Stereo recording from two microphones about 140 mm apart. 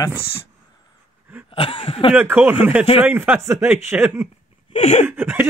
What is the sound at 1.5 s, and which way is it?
Speech, 40° left (ahead or behind).